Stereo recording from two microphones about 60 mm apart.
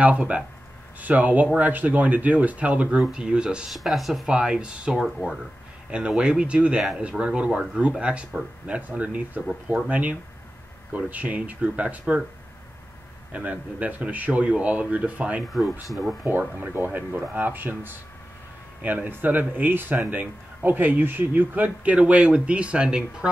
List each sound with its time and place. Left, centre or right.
0.0 s speech: right
3.7 s speech: centre
4.3 s speech: centre
4.9 s speech: centre
5.9 s speech: centre
13.3 s speech: right
15.9 s speech: centre
16.3 s speech: right